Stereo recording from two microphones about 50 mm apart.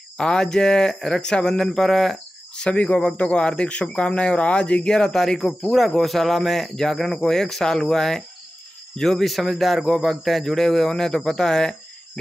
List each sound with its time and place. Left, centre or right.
0.2 s speech: centre
2.7 s speech: left